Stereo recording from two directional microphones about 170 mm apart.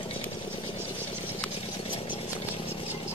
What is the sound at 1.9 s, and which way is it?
Chainsaw, 30° left (ahead or behind).